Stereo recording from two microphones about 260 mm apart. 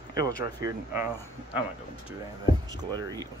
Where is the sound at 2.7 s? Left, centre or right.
Centre.